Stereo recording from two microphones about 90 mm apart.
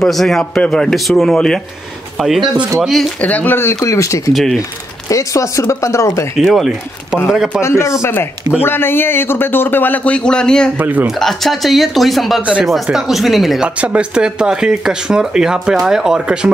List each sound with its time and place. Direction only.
0.0 s speech: 5° left (ahead or behind)
3.2 s speech: 15° left (ahead or behind)
3.8 s speech: 35° left (ahead or behind)
4.3 s speech: centre (ahead or behind)
5.1 s speech: 35° left (ahead or behind)
6.3 s speech: centre (ahead or behind)
7.6 s speech: 30° left (ahead or behind); by 10.7 s 10° left (ahead or behind)
10.8 s speech: 20° right (ahead or behind)
11.1 s speech: centre (ahead or behind)